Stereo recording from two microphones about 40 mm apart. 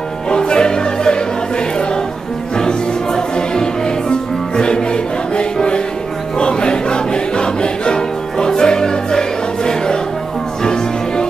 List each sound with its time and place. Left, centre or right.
0.3 s music: left
2.5 s music: centre